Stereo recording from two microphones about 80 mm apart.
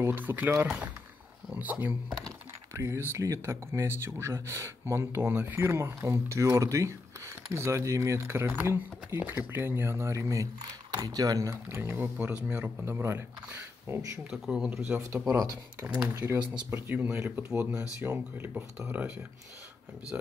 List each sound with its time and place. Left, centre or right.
0.0 s speech: right
2.7 s speech: right
11.0 s speech: right
12.4 s speech: centre
12.8 s speech: right
14.3 s speech: centre
14.9 s speech: centre
15.2 s speech: right
16.1 s speech: right